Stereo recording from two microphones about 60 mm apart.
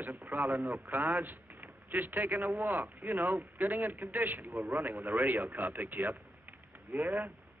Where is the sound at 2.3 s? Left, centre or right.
Right.